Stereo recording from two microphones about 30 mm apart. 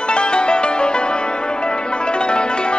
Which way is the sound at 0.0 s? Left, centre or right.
Left.